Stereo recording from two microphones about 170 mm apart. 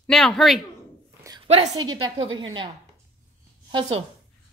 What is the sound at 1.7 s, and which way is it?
Speech, 25° right (ahead or behind).